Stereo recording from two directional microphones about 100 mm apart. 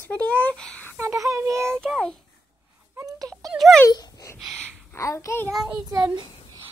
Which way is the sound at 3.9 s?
40° left (ahead or behind).